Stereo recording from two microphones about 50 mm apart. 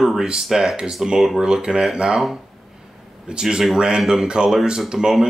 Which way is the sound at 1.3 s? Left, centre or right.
Centre.